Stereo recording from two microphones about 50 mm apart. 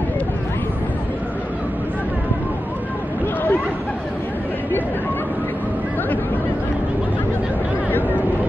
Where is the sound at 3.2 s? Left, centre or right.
Left.